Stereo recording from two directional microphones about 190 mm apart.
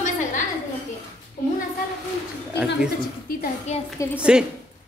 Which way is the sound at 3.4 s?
35° left (ahead or behind).